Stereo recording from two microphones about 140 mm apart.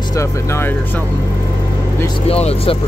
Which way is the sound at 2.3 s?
45° left (ahead or behind).